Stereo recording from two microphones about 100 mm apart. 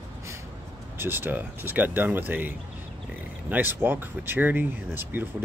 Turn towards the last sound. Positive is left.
turn(degrees=-20)  # may be behind; listen again after turning